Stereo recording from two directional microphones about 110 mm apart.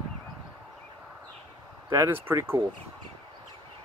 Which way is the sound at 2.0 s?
25° right (ahead or behind).